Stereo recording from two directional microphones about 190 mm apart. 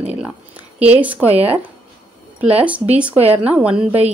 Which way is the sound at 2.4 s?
5° right (ahead or behind).